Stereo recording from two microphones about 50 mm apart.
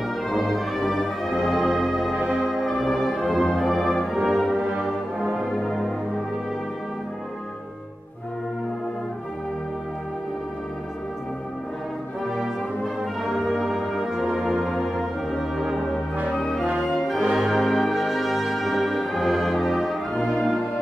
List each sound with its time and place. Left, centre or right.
0.3 s music: centre
4.6 s brass instrument: centre
5.6 s music: centre
12.4 s brass instrument: centre
14.5 s music: centre
17.3 s brass instrument: centre